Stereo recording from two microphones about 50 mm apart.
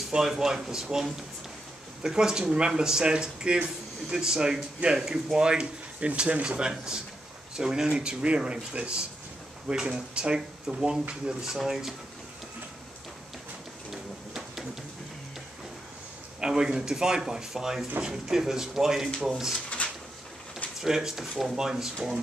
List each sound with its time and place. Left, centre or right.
0.1 s speech: centre
11.5 s speech: centre
16.3 s speech: centre
20.8 s speech: centre